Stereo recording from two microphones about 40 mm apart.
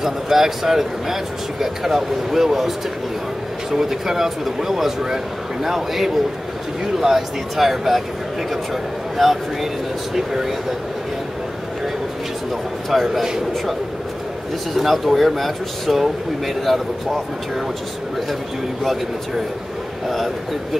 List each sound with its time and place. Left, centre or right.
0.0 s speech: centre
3.7 s speech: centre
9.2 s speech: centre
12.9 s speech: centre
14.7 s speech: centre